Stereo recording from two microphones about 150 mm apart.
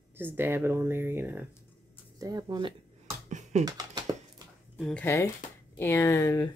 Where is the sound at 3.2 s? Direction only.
50° right (ahead or behind).